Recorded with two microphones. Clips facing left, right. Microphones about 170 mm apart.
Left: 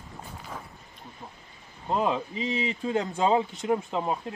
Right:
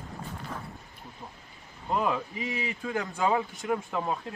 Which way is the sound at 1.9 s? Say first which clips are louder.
Left 2 dB; 25° left (ahead or behind).